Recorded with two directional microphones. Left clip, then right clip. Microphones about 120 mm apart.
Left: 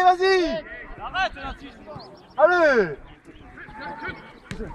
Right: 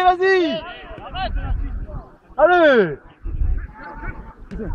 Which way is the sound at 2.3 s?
35° right (ahead or behind).